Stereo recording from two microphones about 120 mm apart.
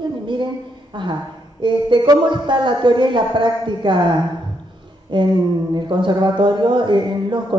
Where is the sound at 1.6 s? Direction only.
40° right (ahead or behind).